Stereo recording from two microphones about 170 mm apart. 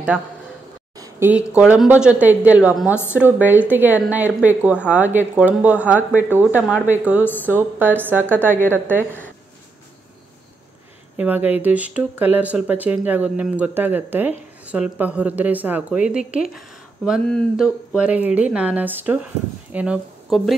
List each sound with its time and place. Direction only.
0.9 s a sound: 20° right (ahead or behind)
1.3 s speech: 10° right (ahead or behind)
2.9 s speech: 15° left (ahead or behind)
3.2 s speech: 10° right (ahead or behind)
7.2 s speech: 10° left (ahead or behind)
7.5 s speech: 10° right (ahead or behind)
11.1 s speech: 10° right (ahead or behind)